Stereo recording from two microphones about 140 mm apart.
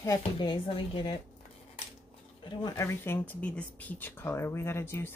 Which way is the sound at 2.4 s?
30° left (ahead or behind).